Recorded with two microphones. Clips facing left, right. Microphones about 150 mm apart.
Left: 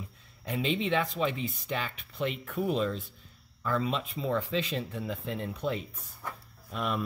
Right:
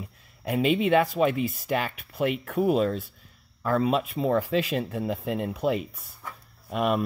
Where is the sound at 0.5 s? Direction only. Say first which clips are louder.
Right 7 dB; 60° right (ahead or behind).